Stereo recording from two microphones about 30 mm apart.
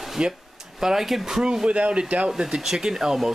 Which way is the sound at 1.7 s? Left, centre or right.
Right.